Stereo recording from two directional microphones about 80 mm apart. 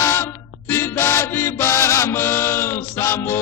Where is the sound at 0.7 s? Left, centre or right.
Left.